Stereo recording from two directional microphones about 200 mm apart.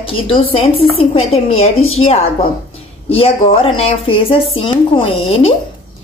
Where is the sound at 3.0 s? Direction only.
30° left (ahead or behind).